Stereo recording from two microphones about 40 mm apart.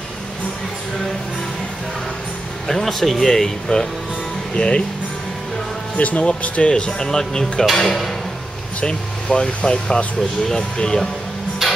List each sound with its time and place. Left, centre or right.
2.7 s speech: centre
4.6 s speech: left
5.9 s speech: left
6.7 s speech: centre
8.8 s speech: left
11.6 s music: centre